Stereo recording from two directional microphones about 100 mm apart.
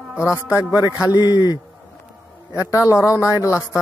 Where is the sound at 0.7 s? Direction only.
40° left (ahead or behind).